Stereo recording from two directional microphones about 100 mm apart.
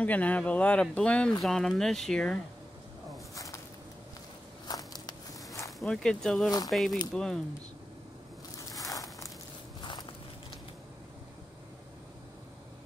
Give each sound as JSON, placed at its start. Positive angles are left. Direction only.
{"t": 0.0, "sound": "speech", "side_deg": 15}
{"t": 3.3, "sound": "a sound", "side_deg": 35}
{"t": 4.6, "sound": "walk", "side_deg": 40}
{"t": 5.8, "sound": "speech", "side_deg": 5}
{"t": 8.5, "sound": "a sound", "side_deg": 35}
{"t": 9.8, "sound": "walk", "side_deg": 50}